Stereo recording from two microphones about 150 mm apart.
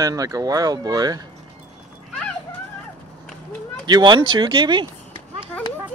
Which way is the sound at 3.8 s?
30° right (ahead or behind).